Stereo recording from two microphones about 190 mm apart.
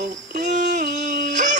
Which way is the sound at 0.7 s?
40° right (ahead or behind).